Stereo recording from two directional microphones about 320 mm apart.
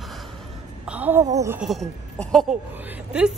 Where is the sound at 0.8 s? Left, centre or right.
Centre.